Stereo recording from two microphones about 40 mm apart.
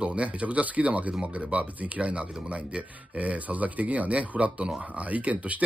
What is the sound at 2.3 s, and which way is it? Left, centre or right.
Speech, centre.